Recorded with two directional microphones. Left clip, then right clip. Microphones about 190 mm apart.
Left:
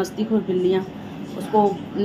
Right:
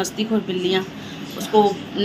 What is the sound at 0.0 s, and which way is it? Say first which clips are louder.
A woman's voice: even; 15° left (ahead or behind).